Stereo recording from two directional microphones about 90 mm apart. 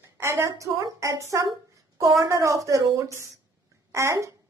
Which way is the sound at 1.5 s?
35° right (ahead or behind).